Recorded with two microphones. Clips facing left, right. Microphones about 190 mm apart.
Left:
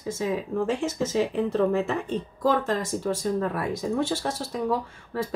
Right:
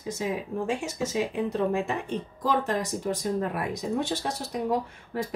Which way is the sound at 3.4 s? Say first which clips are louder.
Left 2 dB; 20° right (ahead or behind).